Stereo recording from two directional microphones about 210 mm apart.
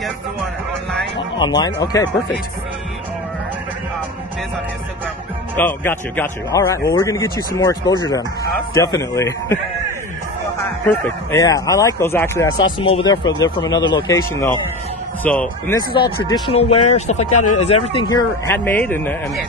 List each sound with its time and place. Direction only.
1.1 s speech: 20° left (ahead or behind)
5.6 s a man's voice: 10° left (ahead or behind)
10.6 s a man's voice: 15° left (ahead or behind)
12.7 s a man's voice: 25° left (ahead or behind); by 15.8 s 10° left (ahead or behind)
15.9 s speech: 25° left (ahead or behind)
17.3 s speech: 90° left
17.6 s a man's voice: 30° left (ahead or behind); by 19.4 s 10° left (ahead or behind)